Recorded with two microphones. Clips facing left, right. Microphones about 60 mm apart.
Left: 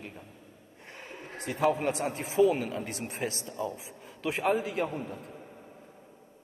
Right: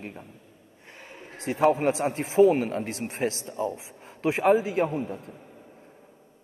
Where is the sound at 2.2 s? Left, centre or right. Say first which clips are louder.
Right 5 dB; right.